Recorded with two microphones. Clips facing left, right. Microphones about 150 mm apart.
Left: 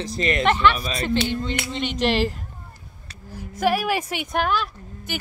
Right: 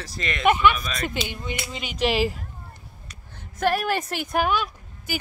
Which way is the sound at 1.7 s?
5° right (ahead or behind).